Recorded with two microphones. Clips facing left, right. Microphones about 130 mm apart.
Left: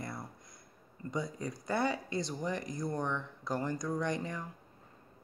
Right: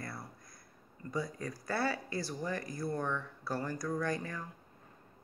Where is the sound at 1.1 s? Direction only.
20° left (ahead or behind).